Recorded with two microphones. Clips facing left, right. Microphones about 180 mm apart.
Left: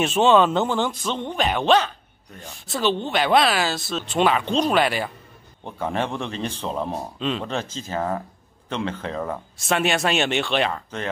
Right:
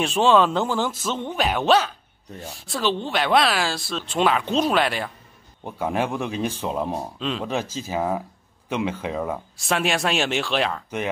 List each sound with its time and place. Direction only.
0.0 s speech: centre (ahead or behind)
5.6 s speech: 10° right (ahead or behind)
7.2 s speech: centre (ahead or behind)